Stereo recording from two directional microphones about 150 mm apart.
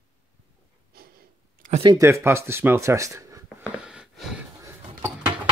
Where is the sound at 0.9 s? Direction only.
90° right.